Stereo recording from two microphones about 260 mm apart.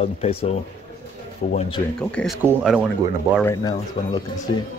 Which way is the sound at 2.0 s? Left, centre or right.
Centre.